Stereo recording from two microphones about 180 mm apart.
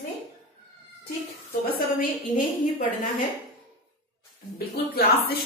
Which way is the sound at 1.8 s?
50° left (ahead or behind).